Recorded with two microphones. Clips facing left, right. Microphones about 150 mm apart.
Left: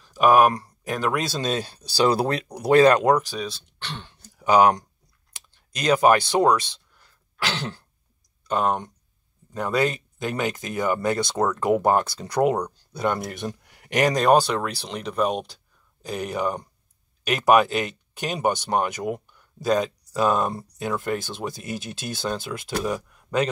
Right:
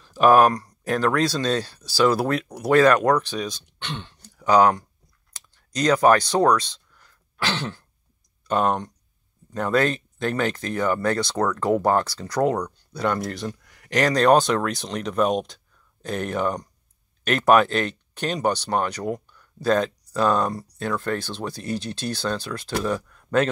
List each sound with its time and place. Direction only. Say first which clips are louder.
0.1 s speech: right 1 dB; 10° left (ahead or behind)
3.2 s speech: right 1 dB; 5° left (ahead or behind)
4.4 s speech: even; 20° left (ahead or behind)
8.5 s speech: right 1 dB; centre (ahead or behind)